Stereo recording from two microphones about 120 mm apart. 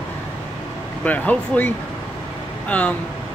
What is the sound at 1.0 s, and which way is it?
Speech, 10° left (ahead or behind).